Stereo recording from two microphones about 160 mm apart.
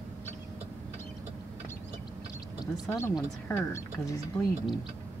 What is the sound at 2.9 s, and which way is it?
Speech, 5° left (ahead or behind).